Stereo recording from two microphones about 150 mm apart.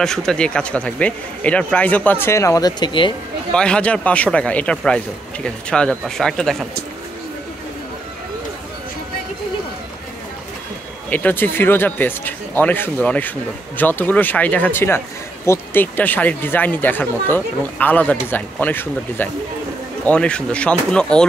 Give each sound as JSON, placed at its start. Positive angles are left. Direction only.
{"t": 0.0, "sound": "speech", "side_deg": 5}
{"t": 3.5, "sound": "speech", "side_deg": 5}
{"t": 11.1, "sound": "speech", "side_deg": 10}